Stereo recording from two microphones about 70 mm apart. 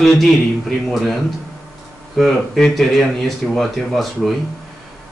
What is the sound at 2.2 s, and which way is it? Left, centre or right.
A man's voice, centre.